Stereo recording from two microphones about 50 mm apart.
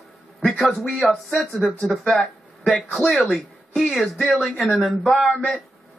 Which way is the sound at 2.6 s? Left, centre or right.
Centre.